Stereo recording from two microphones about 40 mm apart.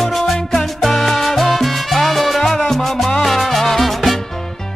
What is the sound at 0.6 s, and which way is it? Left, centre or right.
Salsa music, centre.